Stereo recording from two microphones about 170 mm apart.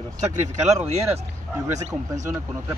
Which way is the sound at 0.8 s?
40° right (ahead or behind).